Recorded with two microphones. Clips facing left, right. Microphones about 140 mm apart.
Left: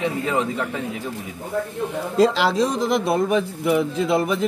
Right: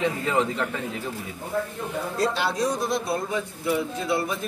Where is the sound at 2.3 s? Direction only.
90° left.